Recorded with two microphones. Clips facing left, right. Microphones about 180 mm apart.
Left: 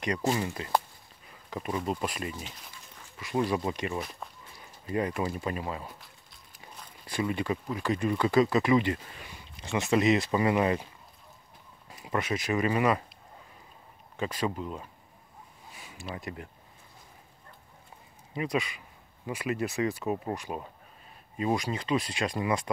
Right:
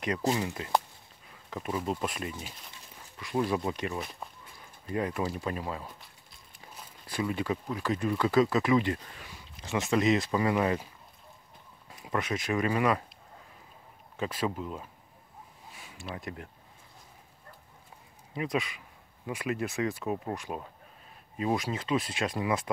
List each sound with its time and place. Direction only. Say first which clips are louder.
0.3 s speech: even; centre (ahead or behind)
11.9 s speech: left 1 dB; centre (ahead or behind)
14.1 s speech: left 1 dB; centre (ahead or behind)
15.7 s a sound: left 1 dB; centre (ahead or behind)
18.3 s speech: left 1 dB; centre (ahead or behind)